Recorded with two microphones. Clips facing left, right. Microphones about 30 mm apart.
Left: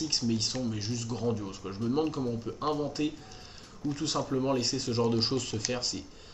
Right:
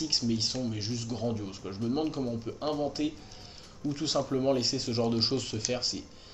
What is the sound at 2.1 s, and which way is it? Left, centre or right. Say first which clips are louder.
Speech: even; centre.